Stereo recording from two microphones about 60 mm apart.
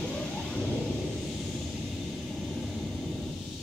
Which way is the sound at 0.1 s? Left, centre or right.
Centre.